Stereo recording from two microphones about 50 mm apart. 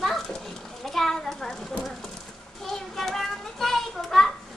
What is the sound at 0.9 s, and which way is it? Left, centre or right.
Children playing, centre.